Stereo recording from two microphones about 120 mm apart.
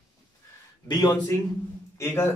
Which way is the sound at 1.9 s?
20° left (ahead or behind).